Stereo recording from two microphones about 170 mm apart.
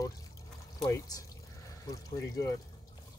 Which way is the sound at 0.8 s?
20° left (ahead or behind).